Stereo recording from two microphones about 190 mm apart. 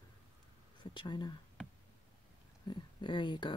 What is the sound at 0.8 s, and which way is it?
Speech, 25° left (ahead or behind).